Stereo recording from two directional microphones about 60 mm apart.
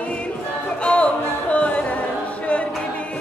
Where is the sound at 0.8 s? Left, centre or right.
Centre.